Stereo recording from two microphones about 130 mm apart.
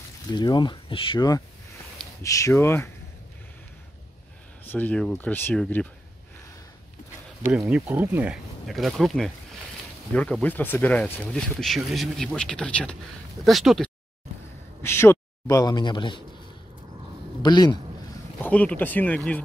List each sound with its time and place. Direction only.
0.3 s speech: 35° left (ahead or behind); by 2.9 s 20° left (ahead or behind)
4.6 s speech: 15° left (ahead or behind)
7.5 s speech: 5° right (ahead or behind)
7.8 s speech: 15° right (ahead or behind)
8.6 s speech: centre (ahead or behind)
14.8 s speech: 20° left (ahead or behind); by 16.2 s 35° left (ahead or behind)
17.4 s a man's voice: 35° left (ahead or behind)
18.4 s speech: 10° left (ahead or behind)